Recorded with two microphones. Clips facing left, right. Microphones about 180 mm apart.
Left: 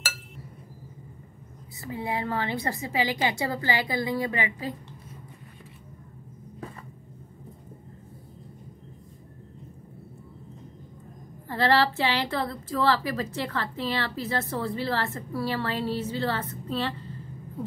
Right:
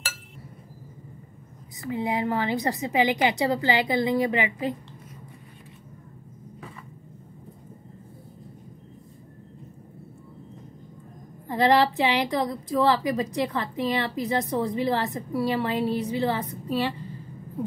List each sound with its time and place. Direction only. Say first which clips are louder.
1.9 s a woman's voice: right 4 dB; 20° right (ahead or behind)
11.4 s a woman's voice: right 3 dB; 15° right (ahead or behind)